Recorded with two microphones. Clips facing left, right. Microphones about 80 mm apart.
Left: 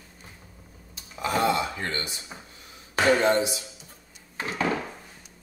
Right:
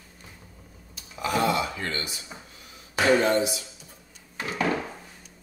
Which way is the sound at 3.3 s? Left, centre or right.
Left.